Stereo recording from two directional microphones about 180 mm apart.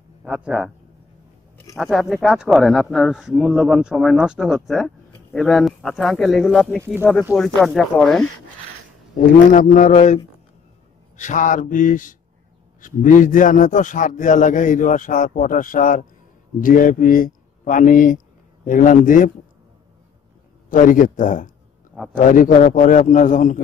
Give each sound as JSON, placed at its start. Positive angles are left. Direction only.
{"t": 0.2, "sound": "speech", "side_deg": -5}
{"t": 1.8, "sound": "speech", "side_deg": 0}
{"t": 9.5, "sound": "a man's voice", "side_deg": 45}
{"t": 20.7, "sound": "a man's voice", "side_deg": 50}